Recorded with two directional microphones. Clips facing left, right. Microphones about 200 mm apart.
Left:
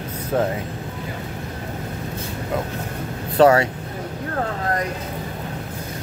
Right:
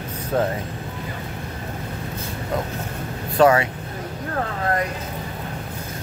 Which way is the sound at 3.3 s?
35° left (ahead or behind).